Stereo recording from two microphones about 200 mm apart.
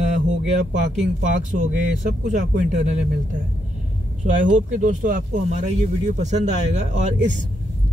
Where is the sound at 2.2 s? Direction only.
40° right (ahead or behind).